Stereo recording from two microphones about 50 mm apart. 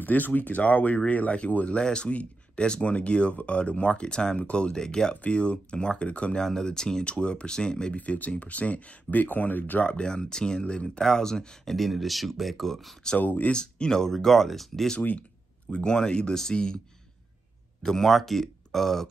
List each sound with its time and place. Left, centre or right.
0.0 s speech: left; by 5.1 s centre
5.1 s speech: left
6.4 s speech: centre
8.0 s speech: left
9.8 s speech: centre
13.2 s speech: left
13.5 s speech: centre
15.7 s speech: centre
17.8 s speech: centre